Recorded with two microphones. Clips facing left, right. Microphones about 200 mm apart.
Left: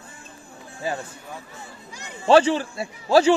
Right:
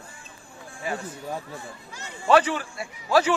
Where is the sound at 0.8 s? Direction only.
30° left (ahead or behind).